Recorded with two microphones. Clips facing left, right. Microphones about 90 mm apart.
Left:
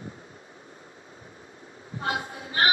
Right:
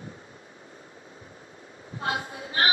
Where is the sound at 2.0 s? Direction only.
30° left (ahead or behind).